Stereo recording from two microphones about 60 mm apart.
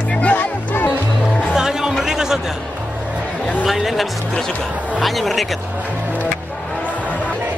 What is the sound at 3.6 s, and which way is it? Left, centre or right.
Music, centre.